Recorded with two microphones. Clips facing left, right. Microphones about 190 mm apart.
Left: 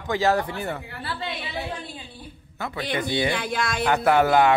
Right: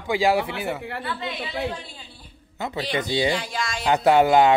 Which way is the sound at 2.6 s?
20° right (ahead or behind).